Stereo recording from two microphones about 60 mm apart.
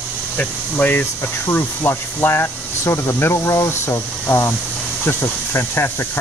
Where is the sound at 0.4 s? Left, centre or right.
Left.